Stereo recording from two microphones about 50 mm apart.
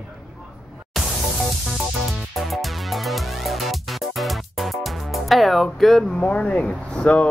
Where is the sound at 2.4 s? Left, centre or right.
Centre.